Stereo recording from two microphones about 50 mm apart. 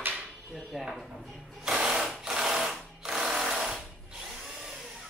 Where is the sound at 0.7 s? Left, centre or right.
Centre.